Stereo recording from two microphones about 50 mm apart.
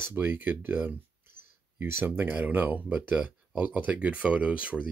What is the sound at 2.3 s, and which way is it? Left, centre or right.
Speech, right.